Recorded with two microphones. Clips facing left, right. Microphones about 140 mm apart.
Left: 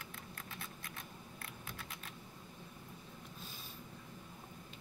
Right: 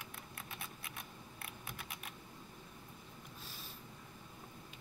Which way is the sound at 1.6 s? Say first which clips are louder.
Right 1 dB; 15° right (ahead or behind).